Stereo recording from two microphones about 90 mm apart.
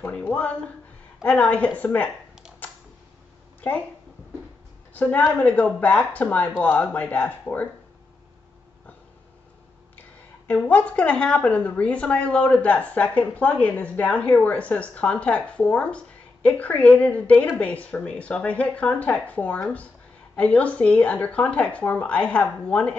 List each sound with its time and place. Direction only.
0.0 s a woman's voice: 20° left (ahead or behind)
2.6 s a sound: 20° left (ahead or behind)
4.9 s a woman's voice: 15° left (ahead or behind)
10.4 s a woman's voice: 20° left (ahead or behind)